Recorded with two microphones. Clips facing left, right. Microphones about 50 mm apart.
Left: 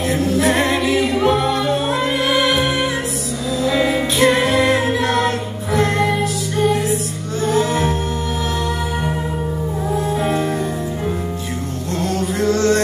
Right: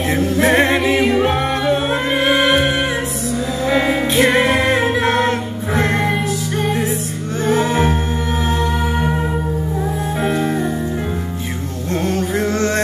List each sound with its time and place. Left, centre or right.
0.1 s a capella: right
3.6 s music: right
12.0 s music: right